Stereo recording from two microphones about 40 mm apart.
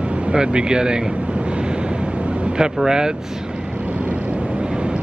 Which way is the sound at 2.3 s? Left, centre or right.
Right.